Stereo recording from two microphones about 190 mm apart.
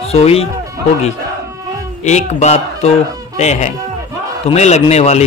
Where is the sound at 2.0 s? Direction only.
40° left (ahead or behind).